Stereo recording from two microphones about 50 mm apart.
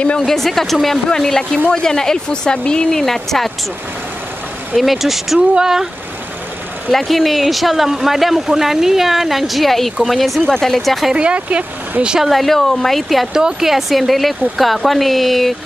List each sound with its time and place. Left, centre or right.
0.2 s speech: centre
4.7 s speech: centre
6.9 s speech: centre
11.1 s speech: right
12.2 s speech: centre
13.4 s speech: centre